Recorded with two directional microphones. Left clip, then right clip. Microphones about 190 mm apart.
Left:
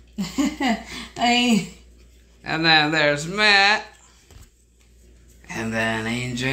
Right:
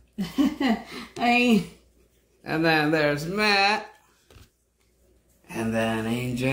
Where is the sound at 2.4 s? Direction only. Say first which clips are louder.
Left 5 dB; 10° right (ahead or behind).